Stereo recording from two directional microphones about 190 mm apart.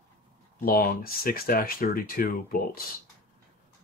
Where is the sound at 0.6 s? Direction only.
50° left (ahead or behind).